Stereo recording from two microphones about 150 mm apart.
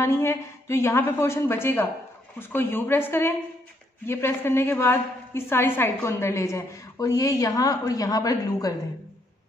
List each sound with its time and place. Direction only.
0.0 s a woman's voice: 15° left (ahead or behind)